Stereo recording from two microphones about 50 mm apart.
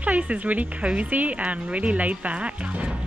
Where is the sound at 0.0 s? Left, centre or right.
Right.